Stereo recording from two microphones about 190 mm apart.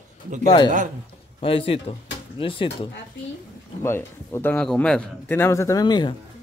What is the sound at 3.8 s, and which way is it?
A man's voice, 15° left (ahead or behind).